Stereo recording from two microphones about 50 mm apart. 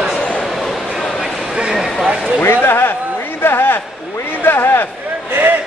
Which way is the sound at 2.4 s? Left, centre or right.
Left.